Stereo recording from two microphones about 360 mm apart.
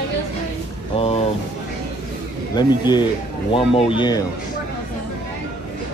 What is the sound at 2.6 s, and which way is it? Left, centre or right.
Speech, centre.